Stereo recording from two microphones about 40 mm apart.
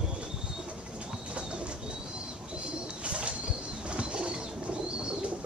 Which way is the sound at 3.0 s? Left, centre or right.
Right.